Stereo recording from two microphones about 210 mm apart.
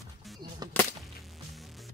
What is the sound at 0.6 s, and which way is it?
Whip, 20° right (ahead or behind).